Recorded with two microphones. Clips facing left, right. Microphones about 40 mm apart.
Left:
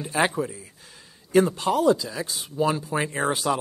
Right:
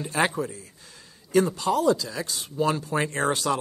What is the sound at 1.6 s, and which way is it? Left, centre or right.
Speech, left.